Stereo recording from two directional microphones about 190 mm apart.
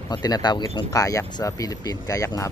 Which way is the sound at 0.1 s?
20° left (ahead or behind).